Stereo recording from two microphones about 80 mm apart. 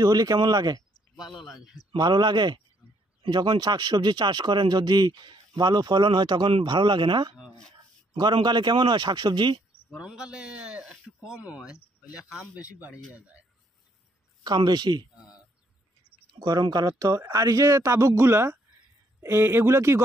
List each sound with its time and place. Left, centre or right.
0.0 s speech: right
1.1 s speech: centre
2.0 s speech: right
8.2 s speech: right
9.9 s speech: centre
14.4 s speech: right
15.1 s a sound: centre
16.4 s speech: right